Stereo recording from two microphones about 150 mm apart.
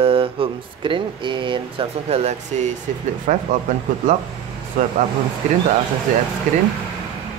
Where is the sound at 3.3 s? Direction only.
55° right (ahead or behind).